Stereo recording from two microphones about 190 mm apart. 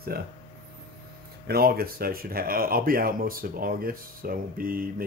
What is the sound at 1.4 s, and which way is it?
Speech, 55° right (ahead or behind).